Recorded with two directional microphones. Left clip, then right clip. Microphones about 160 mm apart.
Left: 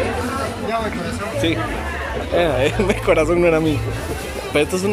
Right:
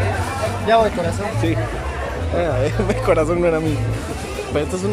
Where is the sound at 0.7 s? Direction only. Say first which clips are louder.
Right 10 dB; 65° right (ahead or behind).